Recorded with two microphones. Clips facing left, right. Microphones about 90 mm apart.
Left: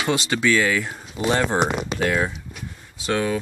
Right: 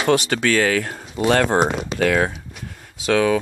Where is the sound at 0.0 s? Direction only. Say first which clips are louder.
Right 3 dB; 55° right (ahead or behind); by 1.6 s 70° right (ahead or behind).